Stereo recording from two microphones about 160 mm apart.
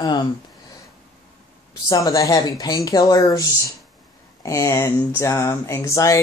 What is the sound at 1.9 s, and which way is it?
Speech, 20° left (ahead or behind).